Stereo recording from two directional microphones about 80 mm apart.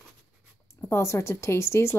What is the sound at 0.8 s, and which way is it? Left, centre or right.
A woman's voice, left.